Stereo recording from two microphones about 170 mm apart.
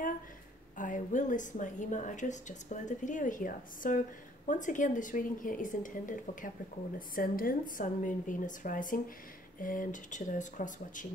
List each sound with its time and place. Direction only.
0.7 s a woman's voice: 50° left (ahead or behind)